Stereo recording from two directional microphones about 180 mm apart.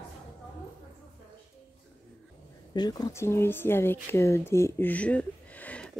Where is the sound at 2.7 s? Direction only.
20° left (ahead or behind).